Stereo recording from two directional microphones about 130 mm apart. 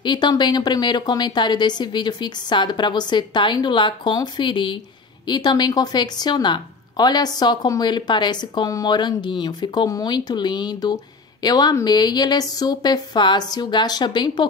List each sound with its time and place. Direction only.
0.0 s a woman's voice: 35° left (ahead or behind)